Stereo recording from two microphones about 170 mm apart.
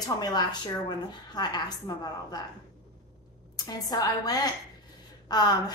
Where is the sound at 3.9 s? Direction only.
20° left (ahead or behind).